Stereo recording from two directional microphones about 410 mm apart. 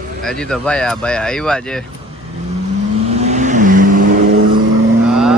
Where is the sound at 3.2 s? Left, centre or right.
Centre.